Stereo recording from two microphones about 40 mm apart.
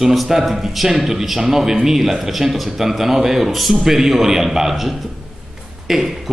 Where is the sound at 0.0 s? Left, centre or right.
Centre.